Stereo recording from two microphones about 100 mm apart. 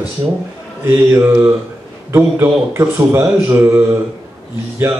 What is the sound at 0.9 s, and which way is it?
Speech, 20° right (ahead or behind).